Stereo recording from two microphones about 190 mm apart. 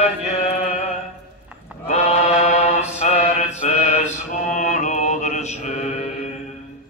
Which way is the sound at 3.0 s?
35° left (ahead or behind).